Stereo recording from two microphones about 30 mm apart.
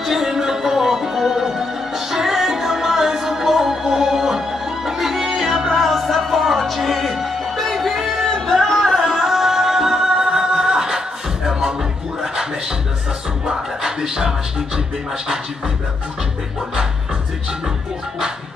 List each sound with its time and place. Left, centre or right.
0.0 s music: centre
5.8 s music: centre
8.3 s music: centre
9.1 s music: centre
13.5 s music: right